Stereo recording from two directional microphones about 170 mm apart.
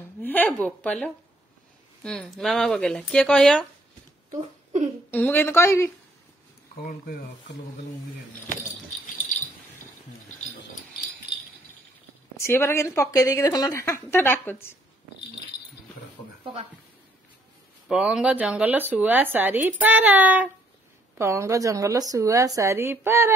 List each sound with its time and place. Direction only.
0.2 s a woman's voice: 10° left (ahead or behind)
5.1 s a woman's voice: 10° left (ahead or behind)
12.4 s a woman's voice: 15° left (ahead or behind)
17.8 s speech: 5° right (ahead or behind)